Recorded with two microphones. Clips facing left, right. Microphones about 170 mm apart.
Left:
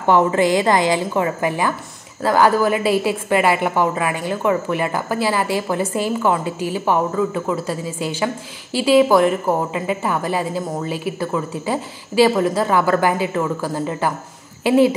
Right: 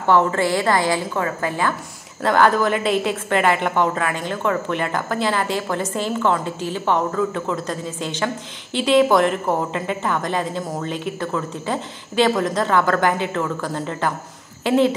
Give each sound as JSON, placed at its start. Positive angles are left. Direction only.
{"t": 0.0, "sound": "a woman's voice", "side_deg": 15}